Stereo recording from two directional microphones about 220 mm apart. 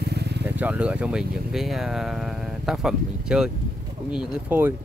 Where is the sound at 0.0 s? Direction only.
50° right (ahead or behind).